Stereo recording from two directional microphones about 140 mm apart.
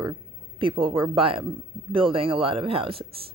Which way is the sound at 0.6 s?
40° right (ahead or behind).